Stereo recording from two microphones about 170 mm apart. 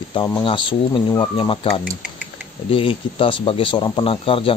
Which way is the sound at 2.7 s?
30° left (ahead or behind).